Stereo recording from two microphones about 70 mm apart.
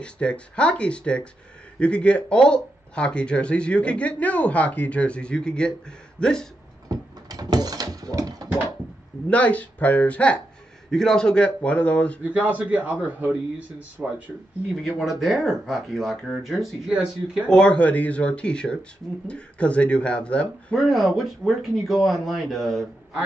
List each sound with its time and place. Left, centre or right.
0.0 s speech: centre
6.9 s door: right
9.3 s speech: centre
10.9 s speech: centre
12.2 s a man's voice: right
14.8 s speech: centre
17.5 s speech: centre
20.7 s speech: centre